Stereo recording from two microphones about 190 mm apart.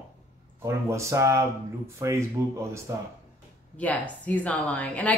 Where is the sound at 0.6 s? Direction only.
15° right (ahead or behind).